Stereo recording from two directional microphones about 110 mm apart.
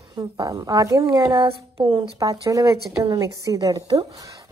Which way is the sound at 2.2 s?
30° right (ahead or behind).